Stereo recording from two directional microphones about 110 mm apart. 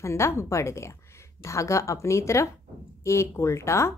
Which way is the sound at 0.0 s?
25° left (ahead or behind).